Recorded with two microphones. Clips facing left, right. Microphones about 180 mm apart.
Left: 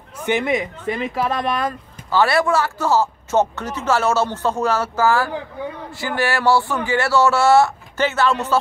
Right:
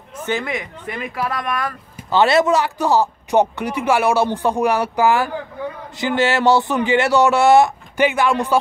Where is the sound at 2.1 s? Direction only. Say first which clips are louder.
Right 2 dB; 20° right (ahead or behind).